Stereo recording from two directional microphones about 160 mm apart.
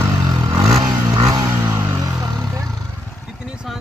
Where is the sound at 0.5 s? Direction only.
20° right (ahead or behind).